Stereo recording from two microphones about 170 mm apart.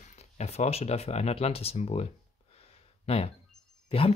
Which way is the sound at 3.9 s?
35° left (ahead or behind).